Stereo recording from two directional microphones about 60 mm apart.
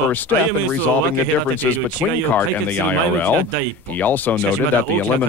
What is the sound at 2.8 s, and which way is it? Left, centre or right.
Speech, left.